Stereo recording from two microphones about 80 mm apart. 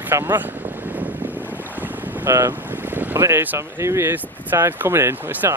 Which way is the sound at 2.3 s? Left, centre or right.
Right.